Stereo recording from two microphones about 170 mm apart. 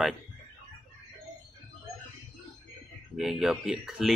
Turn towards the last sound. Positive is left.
turn(degrees=0)  # may be behind; listen again after turning